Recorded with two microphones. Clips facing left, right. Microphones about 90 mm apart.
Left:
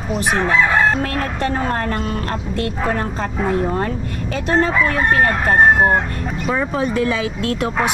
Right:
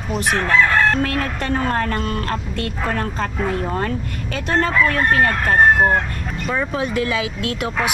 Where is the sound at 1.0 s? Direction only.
25° left (ahead or behind).